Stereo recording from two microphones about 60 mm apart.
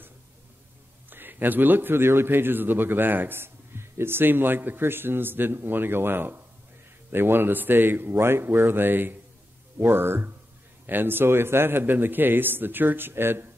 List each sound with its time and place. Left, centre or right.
1.1 s a man's voice: right